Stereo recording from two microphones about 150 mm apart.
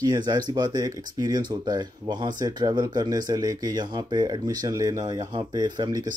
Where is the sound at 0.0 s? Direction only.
25° right (ahead or behind).